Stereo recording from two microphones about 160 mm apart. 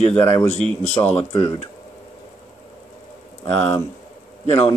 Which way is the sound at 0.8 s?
45° left (ahead or behind).